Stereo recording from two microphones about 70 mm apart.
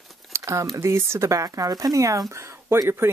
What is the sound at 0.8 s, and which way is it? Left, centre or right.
Speech, right.